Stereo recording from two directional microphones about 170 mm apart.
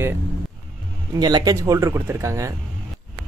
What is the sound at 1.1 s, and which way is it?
Speech, 25° right (ahead or behind).